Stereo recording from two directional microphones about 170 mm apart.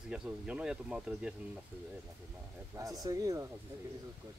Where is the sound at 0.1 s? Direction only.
5° right (ahead or behind).